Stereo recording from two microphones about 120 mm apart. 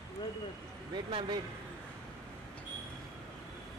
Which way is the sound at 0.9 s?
40° right (ahead or behind).